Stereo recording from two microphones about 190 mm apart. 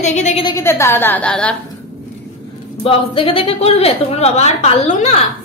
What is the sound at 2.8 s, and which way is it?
Speech, 30° left (ahead or behind).